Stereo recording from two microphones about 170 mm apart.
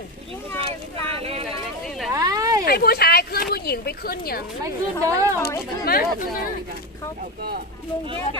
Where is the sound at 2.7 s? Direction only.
65° left (ahead or behind).